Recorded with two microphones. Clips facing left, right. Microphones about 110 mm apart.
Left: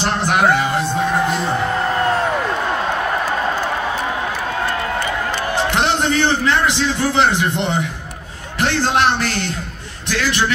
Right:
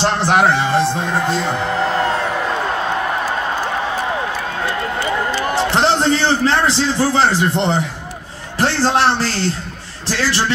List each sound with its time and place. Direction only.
0.0 s music: 30° right (ahead or behind)
5.7 s a man's voice: 30° right (ahead or behind)
8.9 s a man's voice: 30° right (ahead or behind)